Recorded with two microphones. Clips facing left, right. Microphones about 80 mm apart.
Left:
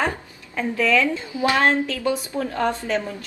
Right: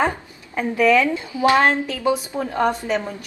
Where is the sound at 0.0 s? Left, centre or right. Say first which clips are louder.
Right 3 dB; right.